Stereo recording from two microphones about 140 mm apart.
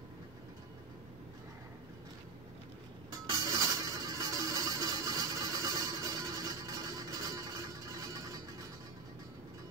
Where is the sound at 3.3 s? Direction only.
25° right (ahead or behind).